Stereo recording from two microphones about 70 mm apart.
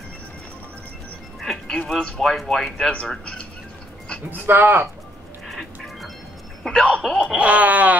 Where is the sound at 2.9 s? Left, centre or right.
Centre.